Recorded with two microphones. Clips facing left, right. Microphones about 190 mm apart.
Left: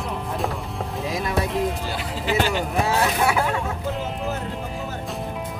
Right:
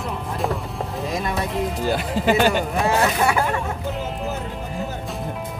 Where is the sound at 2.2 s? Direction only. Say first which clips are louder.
Right 4 dB; 50° right (ahead or behind).